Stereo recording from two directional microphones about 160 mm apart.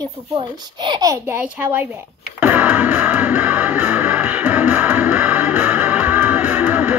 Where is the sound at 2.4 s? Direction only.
10° right (ahead or behind).